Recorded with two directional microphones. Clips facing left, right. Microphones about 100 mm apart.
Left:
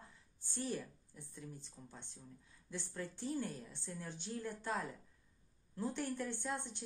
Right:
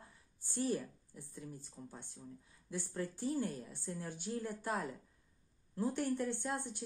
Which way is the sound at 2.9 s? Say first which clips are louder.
Right 4 dB; 45° right (ahead or behind).